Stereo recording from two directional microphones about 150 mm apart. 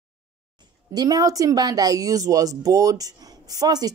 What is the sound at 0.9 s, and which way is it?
Speech, 25° right (ahead or behind).